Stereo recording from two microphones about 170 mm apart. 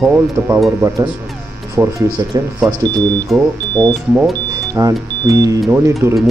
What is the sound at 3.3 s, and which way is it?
Speech, 10° left (ahead or behind).